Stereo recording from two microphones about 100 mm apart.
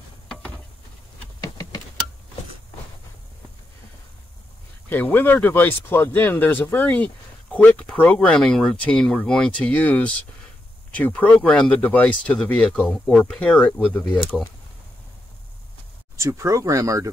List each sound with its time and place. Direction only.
4.8 s speech: 20° left (ahead or behind)
16.2 s speech: 30° right (ahead or behind)